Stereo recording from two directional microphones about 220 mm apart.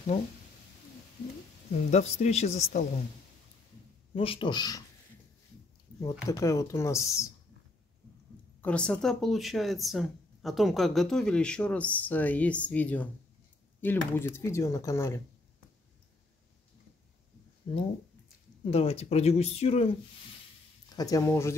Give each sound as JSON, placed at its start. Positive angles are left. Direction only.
{"t": 1.9, "sound": "speech", "side_deg": 30}
{"t": 4.1, "sound": "speech", "side_deg": 25}
{"t": 5.9, "sound": "speech", "side_deg": 15}
{"t": 8.5, "sound": "speech", "side_deg": 5}
{"t": 17.7, "sound": "speech", "side_deg": 25}
{"t": 20.9, "sound": "speech", "side_deg": 15}